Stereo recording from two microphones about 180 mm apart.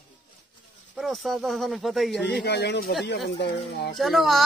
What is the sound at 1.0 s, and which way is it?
A man's voice, centre (ahead or behind).